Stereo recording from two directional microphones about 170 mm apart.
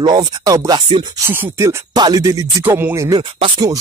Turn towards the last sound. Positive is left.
turn(degrees=-25)  # may be behind; listen again after turning